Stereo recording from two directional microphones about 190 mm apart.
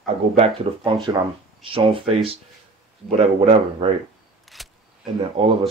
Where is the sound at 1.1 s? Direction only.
20° right (ahead or behind).